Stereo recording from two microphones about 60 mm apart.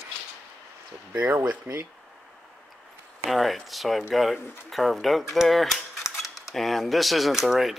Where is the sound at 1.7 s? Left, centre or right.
Right.